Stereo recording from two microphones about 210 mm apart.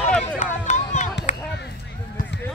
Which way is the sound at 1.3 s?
35° left (ahead or behind).